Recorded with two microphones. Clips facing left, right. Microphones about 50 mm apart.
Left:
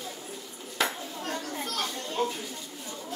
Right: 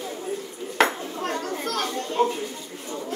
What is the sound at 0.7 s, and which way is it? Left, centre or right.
Dishes, right.